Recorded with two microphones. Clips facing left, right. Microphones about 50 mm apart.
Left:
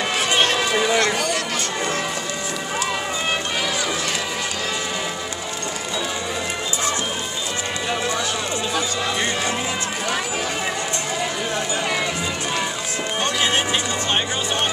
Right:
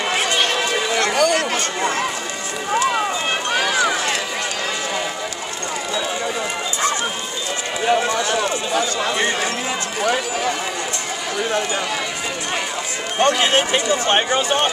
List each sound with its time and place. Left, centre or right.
0.6 s music: centre
13.2 s speech: right